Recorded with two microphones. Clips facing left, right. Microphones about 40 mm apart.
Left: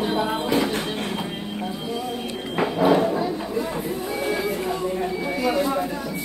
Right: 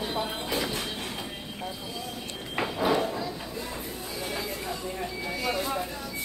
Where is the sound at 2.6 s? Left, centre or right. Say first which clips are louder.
Left 7 dB; left.